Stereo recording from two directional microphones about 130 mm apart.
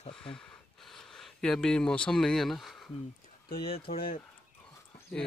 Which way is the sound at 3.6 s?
45° left (ahead or behind).